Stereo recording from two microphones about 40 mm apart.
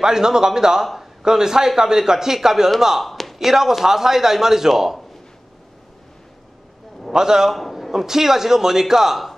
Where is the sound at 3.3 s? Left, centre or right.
Centre.